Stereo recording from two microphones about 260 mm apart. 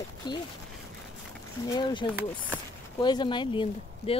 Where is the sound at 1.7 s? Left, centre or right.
Centre.